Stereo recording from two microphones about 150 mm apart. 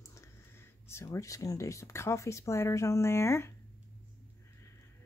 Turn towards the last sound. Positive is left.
turn(degrees=15)  # may be behind; listen again after turning